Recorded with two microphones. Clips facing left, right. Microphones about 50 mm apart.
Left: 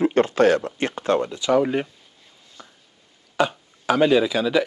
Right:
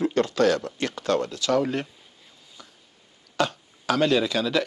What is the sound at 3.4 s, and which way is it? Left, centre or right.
Speech, centre.